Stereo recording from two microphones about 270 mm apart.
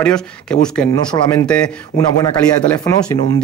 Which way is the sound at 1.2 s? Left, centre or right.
Centre.